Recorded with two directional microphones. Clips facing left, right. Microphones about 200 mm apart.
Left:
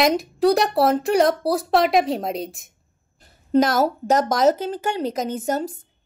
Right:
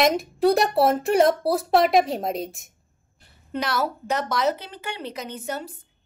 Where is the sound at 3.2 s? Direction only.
45° left (ahead or behind).